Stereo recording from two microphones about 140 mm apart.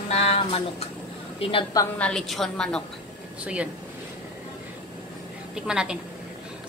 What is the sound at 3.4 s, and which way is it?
Speech, 10° right (ahead or behind).